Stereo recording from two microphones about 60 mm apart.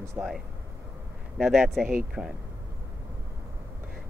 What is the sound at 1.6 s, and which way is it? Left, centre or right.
Speech, centre.